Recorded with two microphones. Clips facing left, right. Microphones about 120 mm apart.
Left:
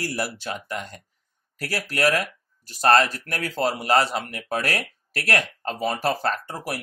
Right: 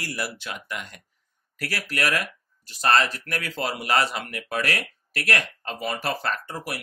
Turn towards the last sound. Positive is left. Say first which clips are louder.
# left 2 dB
turn(degrees=40)  # may be behind; listen again after turning